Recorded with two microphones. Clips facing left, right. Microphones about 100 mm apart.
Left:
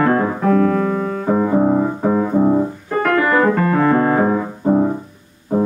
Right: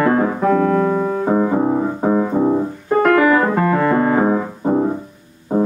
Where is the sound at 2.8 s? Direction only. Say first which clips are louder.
Right 8 dB; 15° right (ahead or behind).